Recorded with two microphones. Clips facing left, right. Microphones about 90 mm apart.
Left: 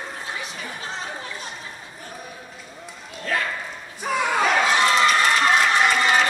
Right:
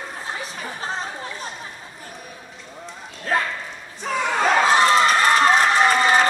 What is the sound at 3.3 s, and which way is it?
Dog, 40° right (ahead or behind).